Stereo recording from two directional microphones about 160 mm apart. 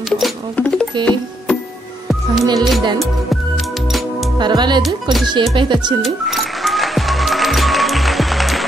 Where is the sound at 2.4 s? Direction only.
25° right (ahead or behind).